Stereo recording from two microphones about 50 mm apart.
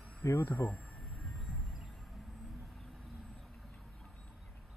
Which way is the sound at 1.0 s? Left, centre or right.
Left.